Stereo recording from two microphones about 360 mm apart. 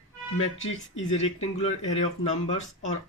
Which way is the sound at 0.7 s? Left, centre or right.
Centre.